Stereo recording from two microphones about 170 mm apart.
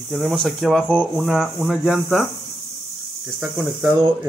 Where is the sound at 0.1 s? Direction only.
Centre (ahead or behind).